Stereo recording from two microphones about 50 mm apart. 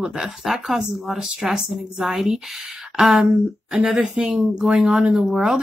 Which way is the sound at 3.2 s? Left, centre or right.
Centre.